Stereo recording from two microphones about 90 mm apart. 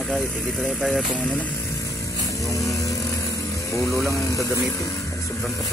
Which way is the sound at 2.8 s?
35° left (ahead or behind).